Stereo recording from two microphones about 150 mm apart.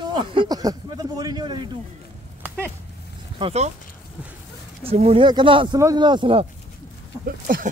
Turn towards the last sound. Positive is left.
turn(degrees=-75)  # may be behind; listen again after turning